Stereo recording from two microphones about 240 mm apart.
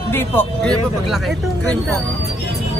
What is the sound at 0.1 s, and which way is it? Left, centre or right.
Speech, centre.